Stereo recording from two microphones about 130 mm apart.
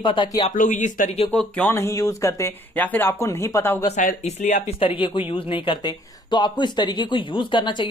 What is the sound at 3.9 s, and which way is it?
Speech, 65° left (ahead or behind).